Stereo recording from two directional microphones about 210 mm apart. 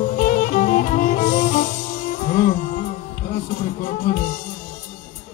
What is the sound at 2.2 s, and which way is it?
Music, 40° left (ahead or behind).